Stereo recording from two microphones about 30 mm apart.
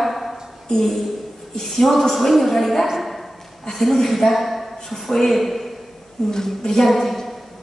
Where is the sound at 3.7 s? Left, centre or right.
Left.